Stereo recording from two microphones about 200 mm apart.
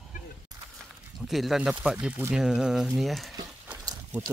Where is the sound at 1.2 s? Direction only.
Centre (ahead or behind).